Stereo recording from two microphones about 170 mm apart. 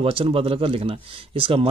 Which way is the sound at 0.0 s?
35° right (ahead or behind).